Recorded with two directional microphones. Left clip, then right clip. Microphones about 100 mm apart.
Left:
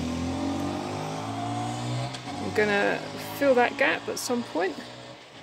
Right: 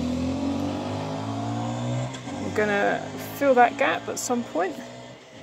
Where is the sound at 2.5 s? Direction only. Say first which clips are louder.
Right 1 dB; 25° left (ahead or behind).